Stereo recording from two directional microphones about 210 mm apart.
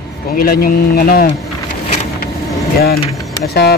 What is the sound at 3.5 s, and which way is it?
Speech, 50° left (ahead or behind).